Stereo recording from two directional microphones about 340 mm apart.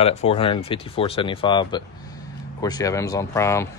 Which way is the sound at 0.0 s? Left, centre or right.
Centre.